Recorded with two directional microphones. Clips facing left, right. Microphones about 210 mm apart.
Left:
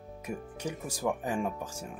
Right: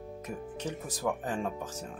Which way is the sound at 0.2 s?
10° left (ahead or behind).